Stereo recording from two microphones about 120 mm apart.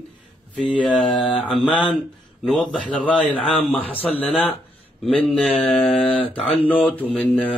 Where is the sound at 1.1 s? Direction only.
45° left (ahead or behind).